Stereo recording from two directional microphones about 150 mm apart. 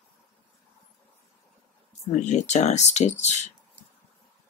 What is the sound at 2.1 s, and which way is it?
Speech, 50° left (ahead or behind).